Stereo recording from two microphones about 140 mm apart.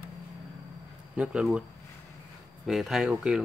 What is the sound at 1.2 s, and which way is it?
Speech, 5° right (ahead or behind).